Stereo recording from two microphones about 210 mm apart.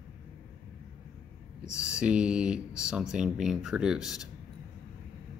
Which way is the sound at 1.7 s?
5° right (ahead or behind).